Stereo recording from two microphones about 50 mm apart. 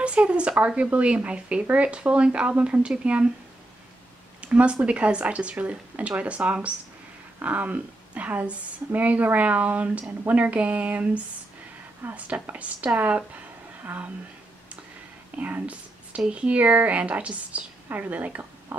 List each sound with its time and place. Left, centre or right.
0.0 s speech: right
4.4 s a woman's voice: right
12.0 s a woman's voice: right
12.4 s a woman's voice: right
15.3 s a woman's voice: right
18.7 s a sound: right